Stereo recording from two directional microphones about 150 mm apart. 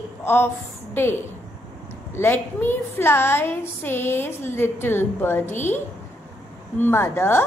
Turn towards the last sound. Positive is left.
turn(degrees=15)  # may be behind; listen again after turning